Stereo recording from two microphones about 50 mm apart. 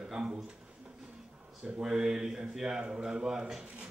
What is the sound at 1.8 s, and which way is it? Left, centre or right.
A man's voice, centre.